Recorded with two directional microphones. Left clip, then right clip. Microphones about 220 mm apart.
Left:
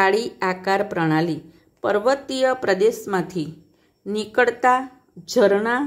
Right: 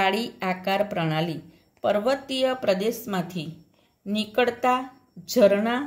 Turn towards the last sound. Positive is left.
turn(degrees=20)  # may be behind; listen again after turning